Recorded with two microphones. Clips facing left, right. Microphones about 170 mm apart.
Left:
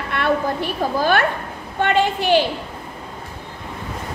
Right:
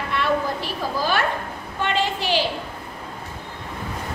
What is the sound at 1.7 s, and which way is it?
Speech, 55° left (ahead or behind).